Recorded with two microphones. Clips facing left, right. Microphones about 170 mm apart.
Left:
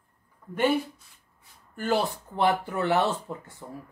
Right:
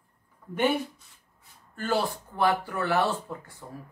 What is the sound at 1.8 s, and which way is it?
Speech, 20° left (ahead or behind).